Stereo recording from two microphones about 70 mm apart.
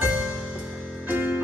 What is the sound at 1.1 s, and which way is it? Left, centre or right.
Music, right.